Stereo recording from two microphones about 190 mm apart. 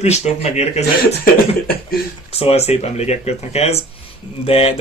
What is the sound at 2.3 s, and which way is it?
Speech, 35° left (ahead or behind).